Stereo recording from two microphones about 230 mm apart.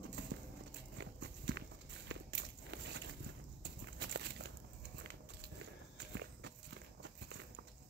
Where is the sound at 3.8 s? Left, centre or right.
Right.